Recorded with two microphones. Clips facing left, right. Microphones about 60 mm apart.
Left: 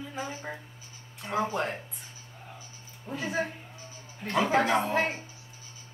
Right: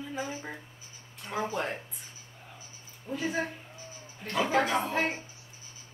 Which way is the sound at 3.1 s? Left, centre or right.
Centre.